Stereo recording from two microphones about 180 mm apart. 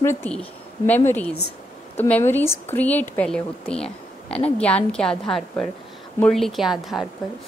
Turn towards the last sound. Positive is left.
turn(degrees=0)  # may be behind; listen again after turning